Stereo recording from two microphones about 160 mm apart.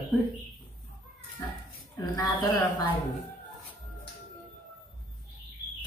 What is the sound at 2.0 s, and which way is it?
Speech, 25° left (ahead or behind).